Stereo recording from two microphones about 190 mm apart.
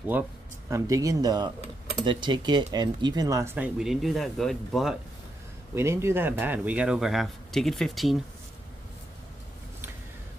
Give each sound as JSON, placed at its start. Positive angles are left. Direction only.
{"t": 0.1, "sound": "speech", "side_deg": -10}
{"t": 5.8, "sound": "speech", "side_deg": -15}